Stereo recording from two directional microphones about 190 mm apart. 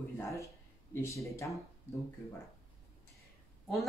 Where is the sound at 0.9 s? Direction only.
15° left (ahead or behind).